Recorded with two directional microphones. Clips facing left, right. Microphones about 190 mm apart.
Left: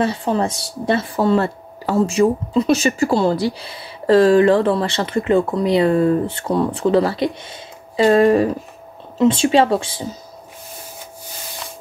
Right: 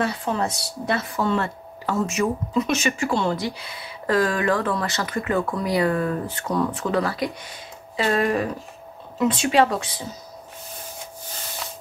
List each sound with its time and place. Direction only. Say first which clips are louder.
0.0 s speech: left 5 dB; 30° left (ahead or behind)